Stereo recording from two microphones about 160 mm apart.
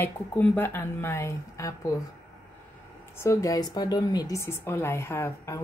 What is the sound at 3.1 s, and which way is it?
A woman's voice, 20° left (ahead or behind).